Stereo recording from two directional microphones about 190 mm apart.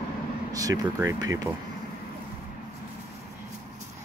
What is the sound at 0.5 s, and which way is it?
Speech, 20° right (ahead or behind).